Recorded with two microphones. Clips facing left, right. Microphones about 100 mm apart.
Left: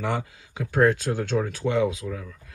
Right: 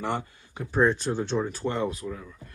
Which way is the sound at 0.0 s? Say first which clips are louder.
Left 2 dB; 90° left.